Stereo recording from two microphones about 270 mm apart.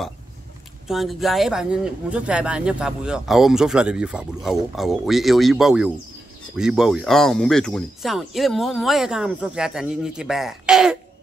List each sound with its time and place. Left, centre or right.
0.8 s speech: centre